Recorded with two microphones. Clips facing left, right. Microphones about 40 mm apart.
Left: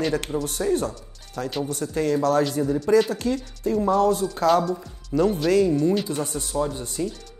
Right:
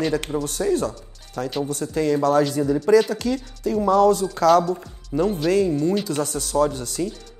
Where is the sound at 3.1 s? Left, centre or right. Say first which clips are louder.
Right 1 dB; right.